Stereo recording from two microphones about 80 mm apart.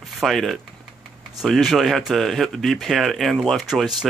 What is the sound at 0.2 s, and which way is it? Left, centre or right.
Speech, centre.